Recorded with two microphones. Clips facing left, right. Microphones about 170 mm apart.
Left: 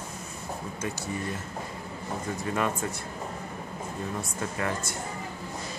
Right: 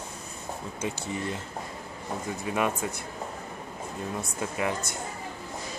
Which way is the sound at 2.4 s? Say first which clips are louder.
Right 1 dB; 15° right (ahead or behind).